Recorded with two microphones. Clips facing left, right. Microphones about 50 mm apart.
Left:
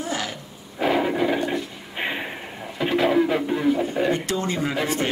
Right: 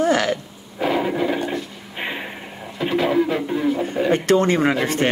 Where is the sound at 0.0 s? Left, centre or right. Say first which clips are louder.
Right 10 dB; right.